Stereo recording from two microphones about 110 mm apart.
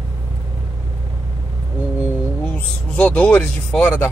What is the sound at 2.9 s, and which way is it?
Speech, 10° left (ahead or behind).